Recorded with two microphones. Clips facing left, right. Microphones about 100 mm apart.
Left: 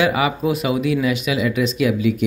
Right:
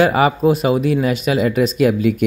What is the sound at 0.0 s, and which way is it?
Speech, 40° right (ahead or behind).